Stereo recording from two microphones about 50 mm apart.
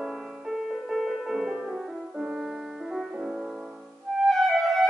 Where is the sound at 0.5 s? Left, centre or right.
Centre.